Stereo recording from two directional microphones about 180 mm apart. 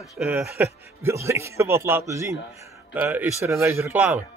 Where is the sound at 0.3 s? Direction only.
15° right (ahead or behind).